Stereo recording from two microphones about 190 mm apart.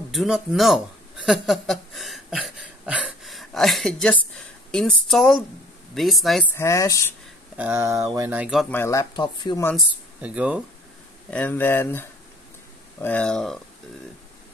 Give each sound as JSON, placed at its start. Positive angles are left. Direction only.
{"t": 0.1, "sound": "speech", "side_deg": 0}
{"t": 1.2, "sound": "a sound", "side_deg": 0}
{"t": 5.9, "sound": "speech", "side_deg": 0}
{"t": 6.5, "sound": "speech", "side_deg": 15}
{"t": 7.5, "sound": "speech", "side_deg": -10}
{"t": 8.7, "sound": "speech", "side_deg": 15}
{"t": 10.2, "sound": "speech", "side_deg": -5}
{"t": 11.2, "sound": "speech", "side_deg": 5}